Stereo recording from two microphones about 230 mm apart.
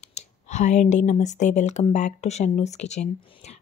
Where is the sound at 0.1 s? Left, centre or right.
Left.